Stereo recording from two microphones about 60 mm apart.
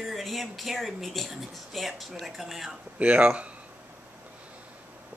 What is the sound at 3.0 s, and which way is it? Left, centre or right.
Speech, right.